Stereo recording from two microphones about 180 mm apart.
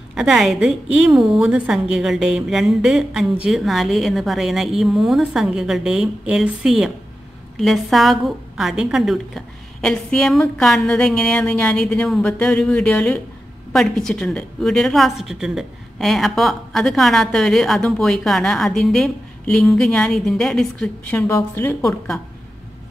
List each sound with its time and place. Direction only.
0.1 s a woman's voice: 5° right (ahead or behind); by 21.7 s 15° left (ahead or behind)
21.8 s a woman's voice: centre (ahead or behind)